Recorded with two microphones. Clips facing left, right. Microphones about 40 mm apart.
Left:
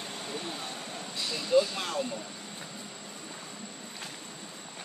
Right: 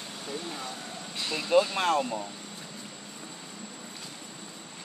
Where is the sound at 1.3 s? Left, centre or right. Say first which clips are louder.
Right 2 dB; right.